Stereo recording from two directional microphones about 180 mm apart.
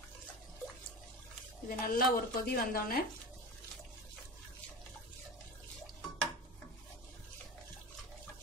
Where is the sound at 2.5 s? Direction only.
55° left (ahead or behind).